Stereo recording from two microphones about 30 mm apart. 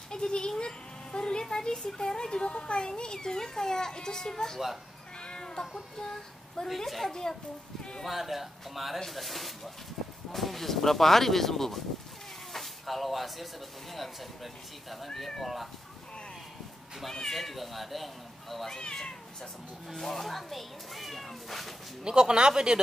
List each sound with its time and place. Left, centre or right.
0.1 s sheep: left
1.4 s a sound: left
1.8 s a child's voice: left
5.2 s cat: left
6.6 s a child's voice: left
8.0 s speech: centre
12.5 s a sound: centre
13.9 s speech: centre
17.1 s speech: centre
18.7 s a child's voice: centre
19.9 s speech: centre
22.0 s speech: right